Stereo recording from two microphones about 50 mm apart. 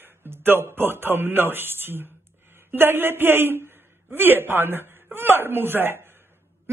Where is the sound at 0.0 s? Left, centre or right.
Right.